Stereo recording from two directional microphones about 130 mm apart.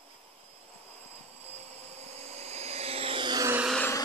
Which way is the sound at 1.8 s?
55° right (ahead or behind).